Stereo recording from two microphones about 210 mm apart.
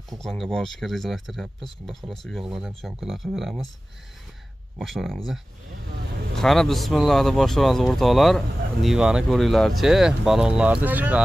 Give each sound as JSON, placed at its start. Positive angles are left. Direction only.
{"t": 0.2, "sound": "speech", "side_deg": 0}
{"t": 4.7, "sound": "speech", "side_deg": 0}